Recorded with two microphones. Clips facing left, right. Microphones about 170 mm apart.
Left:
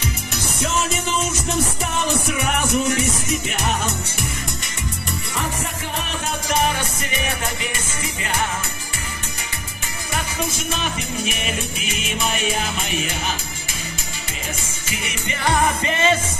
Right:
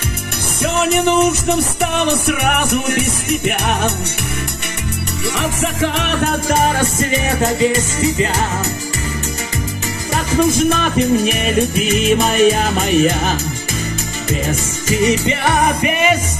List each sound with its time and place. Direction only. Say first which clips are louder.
0.6 s music: right 8 dB; 65° right (ahead or behind)
5.3 s music: right 7 dB; 90° right; by 7.1 s 50° right (ahead or behind)
10.3 s music: right 17 dB; 50° right (ahead or behind)
14.5 s music: right 11 dB; 40° right (ahead or behind)
15.4 s music: right 1 dB; 20° right (ahead or behind)